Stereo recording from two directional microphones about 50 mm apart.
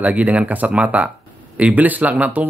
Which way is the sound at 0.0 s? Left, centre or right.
Right.